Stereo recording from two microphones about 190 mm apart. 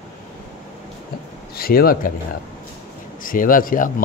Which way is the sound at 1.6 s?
50° left (ahead or behind).